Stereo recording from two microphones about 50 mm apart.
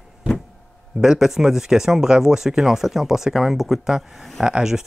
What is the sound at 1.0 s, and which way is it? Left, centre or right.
A man's voice, centre.